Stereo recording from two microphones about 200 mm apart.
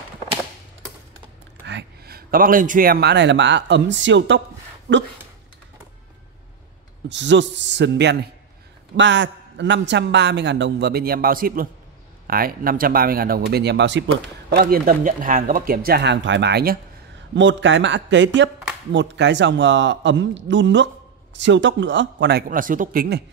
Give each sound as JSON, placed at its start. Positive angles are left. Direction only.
{"t": 1.7, "sound": "a man's voice", "side_deg": -55}
{"t": 7.1, "sound": "a man's voice", "side_deg": -65}
{"t": 14.5, "sound": "speech", "side_deg": -50}
{"t": 17.3, "sound": "a man's voice", "side_deg": -65}
{"t": 22.5, "sound": "speech", "side_deg": -40}